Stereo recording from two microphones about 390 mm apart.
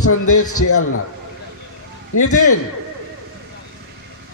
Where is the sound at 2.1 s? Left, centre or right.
Left.